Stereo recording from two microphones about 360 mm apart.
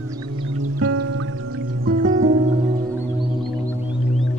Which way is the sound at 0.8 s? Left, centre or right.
Right.